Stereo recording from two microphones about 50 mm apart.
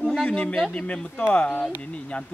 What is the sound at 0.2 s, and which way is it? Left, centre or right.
Speech, left.